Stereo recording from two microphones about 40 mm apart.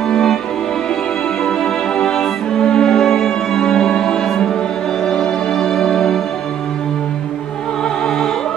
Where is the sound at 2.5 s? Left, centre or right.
Centre.